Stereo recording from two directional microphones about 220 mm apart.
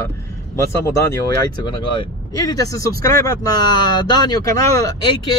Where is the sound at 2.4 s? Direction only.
15° left (ahead or behind).